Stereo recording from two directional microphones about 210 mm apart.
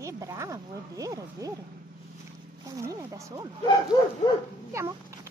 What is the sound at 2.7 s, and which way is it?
Speech, 15° right (ahead or behind).